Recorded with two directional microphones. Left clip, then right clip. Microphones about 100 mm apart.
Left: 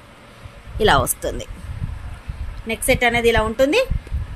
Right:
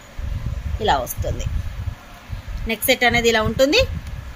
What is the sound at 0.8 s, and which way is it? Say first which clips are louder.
Speech: left 4 dB; 80° left.